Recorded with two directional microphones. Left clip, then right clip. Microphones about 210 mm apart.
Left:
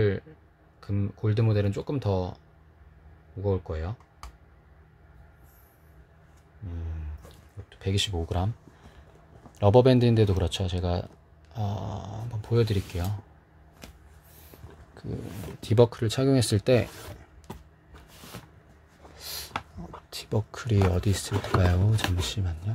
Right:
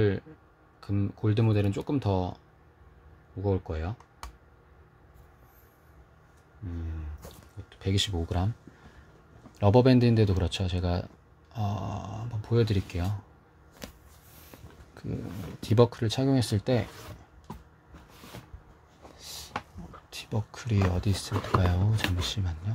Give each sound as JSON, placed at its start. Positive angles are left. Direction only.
{"t": 0.7, "sound": "speech", "side_deg": 0}
{"t": 3.4, "sound": "speech", "side_deg": 0}
{"t": 7.7, "sound": "speech", "side_deg": 0}
{"t": 9.6, "sound": "speech", "side_deg": 5}
{"t": 15.0, "sound": "roaring cats", "side_deg": -5}
{"t": 15.6, "sound": "speech", "side_deg": 5}
{"t": 19.1, "sound": "a sound", "side_deg": 25}
{"t": 20.1, "sound": "speech", "side_deg": 15}